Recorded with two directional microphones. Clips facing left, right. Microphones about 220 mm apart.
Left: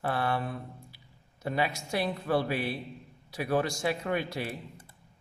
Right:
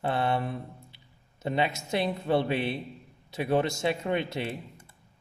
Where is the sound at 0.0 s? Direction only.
20° right (ahead or behind).